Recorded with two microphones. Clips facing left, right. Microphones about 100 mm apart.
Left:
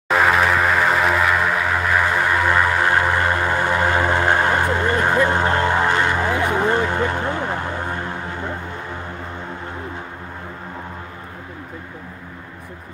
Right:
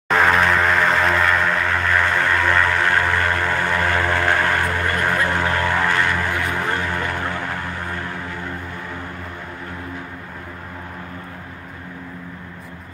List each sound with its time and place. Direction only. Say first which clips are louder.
0.1 s music: even; 5° left (ahead or behind); by 8.5 s 20° left (ahead or behind)